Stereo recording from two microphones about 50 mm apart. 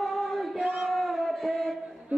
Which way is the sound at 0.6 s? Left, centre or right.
Right.